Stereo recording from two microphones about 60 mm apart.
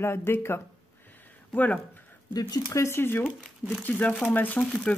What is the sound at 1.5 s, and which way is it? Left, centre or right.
Speech, left.